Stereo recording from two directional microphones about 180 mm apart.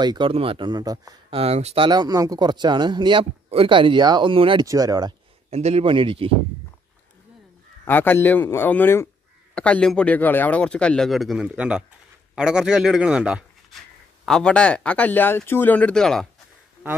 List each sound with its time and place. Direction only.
0.0 s a man's voice: 25° right (ahead or behind)
1.4 s speech: 35° right (ahead or behind)
1.9 s a man's voice: 20° right (ahead or behind)
5.5 s speech: 35° right (ahead or behind)
7.8 s a man's voice: 10° left (ahead or behind)